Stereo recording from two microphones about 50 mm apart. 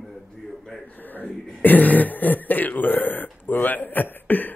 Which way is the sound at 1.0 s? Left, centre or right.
Left.